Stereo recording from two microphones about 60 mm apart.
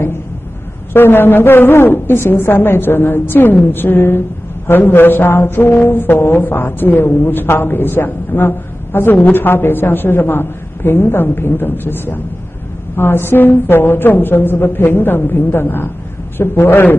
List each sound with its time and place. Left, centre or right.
0.9 s mantra: left